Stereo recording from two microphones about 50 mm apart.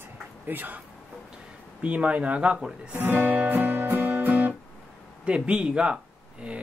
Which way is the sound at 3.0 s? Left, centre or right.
Right.